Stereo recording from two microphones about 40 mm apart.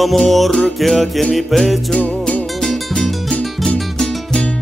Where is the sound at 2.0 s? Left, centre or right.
Left.